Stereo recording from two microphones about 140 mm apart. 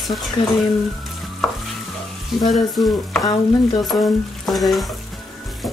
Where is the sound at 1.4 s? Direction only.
5° left (ahead or behind).